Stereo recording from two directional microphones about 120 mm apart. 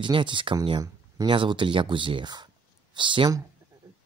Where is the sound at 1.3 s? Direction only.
45° right (ahead or behind).